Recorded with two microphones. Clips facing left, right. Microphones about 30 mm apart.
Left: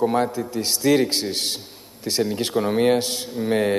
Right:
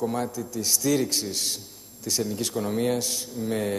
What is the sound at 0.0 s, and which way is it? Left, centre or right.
A man's voice, left.